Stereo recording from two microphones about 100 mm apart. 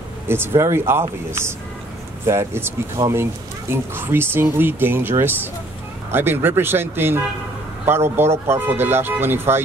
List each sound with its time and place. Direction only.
0.6 s speech: 25° right (ahead or behind)
2.2 s speech: 25° right (ahead or behind)
3.7 s speech: 20° right (ahead or behind)